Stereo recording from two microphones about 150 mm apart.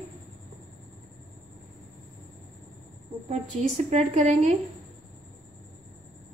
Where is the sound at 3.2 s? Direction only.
45° right (ahead or behind).